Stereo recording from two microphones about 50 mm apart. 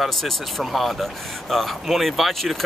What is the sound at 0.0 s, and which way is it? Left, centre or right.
Speech, centre.